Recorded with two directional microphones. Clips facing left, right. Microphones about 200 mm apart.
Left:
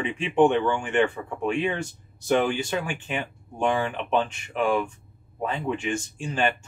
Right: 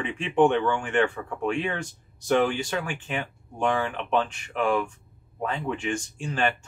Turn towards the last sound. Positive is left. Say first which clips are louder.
# left 1 dB
turn(degrees=5)  # may be behind; listen again after turning